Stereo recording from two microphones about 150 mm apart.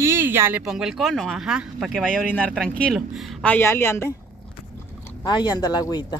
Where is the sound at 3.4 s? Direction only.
15° left (ahead or behind).